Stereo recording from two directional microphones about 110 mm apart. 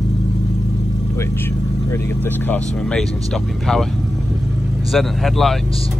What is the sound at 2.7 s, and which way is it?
Speech, 5° left (ahead or behind).